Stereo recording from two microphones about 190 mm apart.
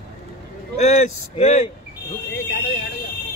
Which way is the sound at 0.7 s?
35° left (ahead or behind).